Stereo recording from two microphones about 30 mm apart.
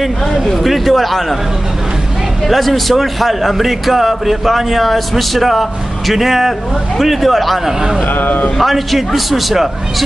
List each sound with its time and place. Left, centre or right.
0.5 s a man's voice: centre
2.4 s a man's voice: centre
8.1 s speech: left
8.5 s a man's voice: centre